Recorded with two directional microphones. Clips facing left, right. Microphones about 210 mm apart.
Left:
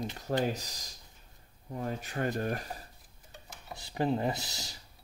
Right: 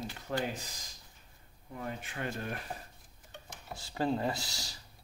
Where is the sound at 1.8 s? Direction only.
40° left (ahead or behind).